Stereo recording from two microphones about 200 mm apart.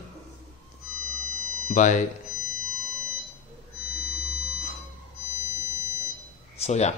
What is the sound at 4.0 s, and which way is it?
Music, 35° right (ahead or behind).